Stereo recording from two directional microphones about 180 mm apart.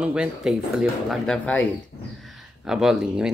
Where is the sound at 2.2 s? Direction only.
5° right (ahead or behind).